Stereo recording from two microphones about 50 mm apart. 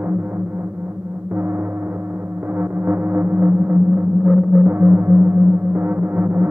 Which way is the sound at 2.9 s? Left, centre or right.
Right.